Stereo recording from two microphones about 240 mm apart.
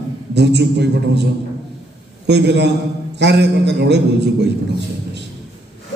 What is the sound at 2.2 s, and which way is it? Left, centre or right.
A man's voice, right.